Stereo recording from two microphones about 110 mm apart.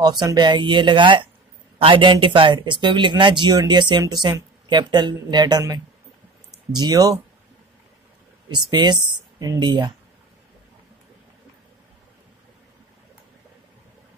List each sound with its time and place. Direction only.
0.2 s speech: 40° right (ahead or behind)
6.7 s speech: 40° right (ahead or behind)
8.5 s speech: 45° right (ahead or behind)